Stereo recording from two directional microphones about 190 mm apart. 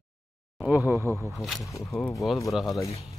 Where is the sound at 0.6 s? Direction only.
5° right (ahead or behind).